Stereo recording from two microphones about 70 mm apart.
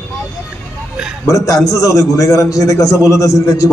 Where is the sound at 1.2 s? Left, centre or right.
Left.